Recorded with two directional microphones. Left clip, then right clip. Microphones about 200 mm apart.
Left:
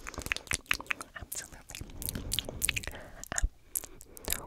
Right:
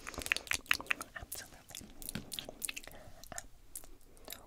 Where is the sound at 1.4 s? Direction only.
35° left (ahead or behind).